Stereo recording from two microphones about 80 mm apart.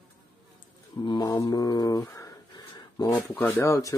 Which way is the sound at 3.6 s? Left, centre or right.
Left.